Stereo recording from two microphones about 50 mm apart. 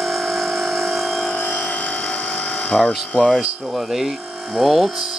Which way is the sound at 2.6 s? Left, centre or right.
Left.